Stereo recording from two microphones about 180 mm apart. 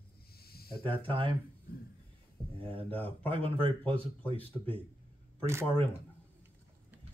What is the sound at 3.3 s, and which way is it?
Speech, 30° right (ahead or behind).